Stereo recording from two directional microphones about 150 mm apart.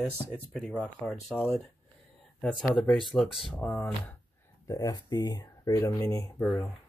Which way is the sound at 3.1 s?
Centre (ahead or behind).